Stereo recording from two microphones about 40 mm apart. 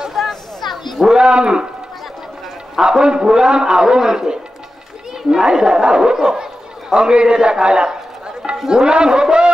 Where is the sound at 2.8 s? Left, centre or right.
Centre.